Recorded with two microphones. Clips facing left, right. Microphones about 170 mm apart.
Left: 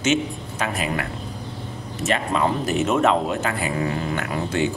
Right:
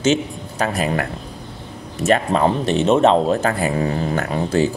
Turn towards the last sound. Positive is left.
turn(degrees=-35)  # may be behind; listen again after turning